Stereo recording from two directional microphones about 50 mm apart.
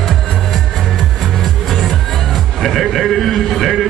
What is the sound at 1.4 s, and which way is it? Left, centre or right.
Music, centre.